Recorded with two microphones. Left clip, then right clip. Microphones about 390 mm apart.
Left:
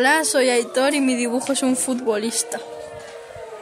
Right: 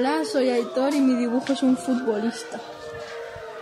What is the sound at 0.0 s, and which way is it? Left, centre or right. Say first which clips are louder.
Speech: left 5 dB; left.